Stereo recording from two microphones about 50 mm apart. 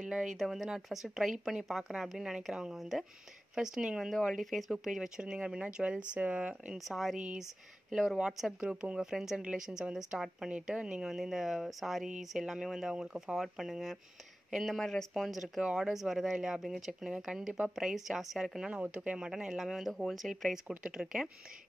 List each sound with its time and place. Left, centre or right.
0.0 s a sound: centre
0.4 s speech: centre
4.3 s speech: centre; by 6.7 s right
6.9 s speech: centre
8.2 s speech: centre
8.5 s speech: right; by 18.7 s centre
18.9 s speech: right